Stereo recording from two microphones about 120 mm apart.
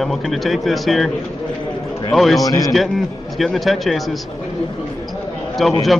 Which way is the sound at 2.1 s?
Centre (ahead or behind).